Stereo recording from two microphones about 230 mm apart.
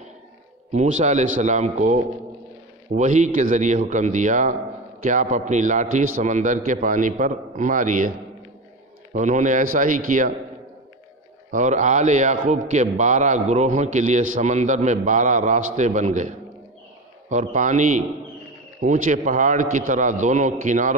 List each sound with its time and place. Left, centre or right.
0.7 s a man's voice: right
3.0 s a man's voice: right
9.1 s a man's voice: right
11.5 s a man's voice: right